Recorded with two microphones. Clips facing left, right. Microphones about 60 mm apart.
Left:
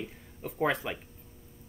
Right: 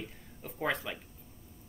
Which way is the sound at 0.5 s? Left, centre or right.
Centre.